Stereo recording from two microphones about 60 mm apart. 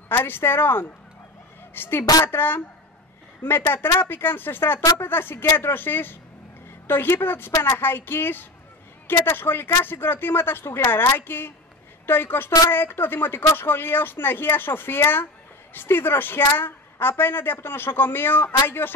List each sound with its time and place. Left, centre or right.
0.1 s a woman's voice: left